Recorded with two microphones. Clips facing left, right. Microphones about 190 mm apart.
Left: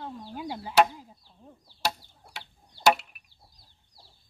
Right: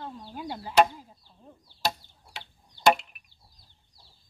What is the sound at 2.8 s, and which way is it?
Chop, centre (ahead or behind).